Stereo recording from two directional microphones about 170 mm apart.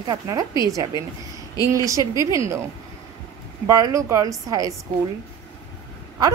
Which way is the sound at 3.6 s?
20° right (ahead or behind).